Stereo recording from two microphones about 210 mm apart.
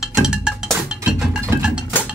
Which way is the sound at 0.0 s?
5° right (ahead or behind).